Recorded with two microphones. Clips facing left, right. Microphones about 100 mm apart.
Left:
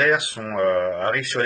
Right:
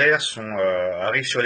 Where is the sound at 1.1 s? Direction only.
5° left (ahead or behind).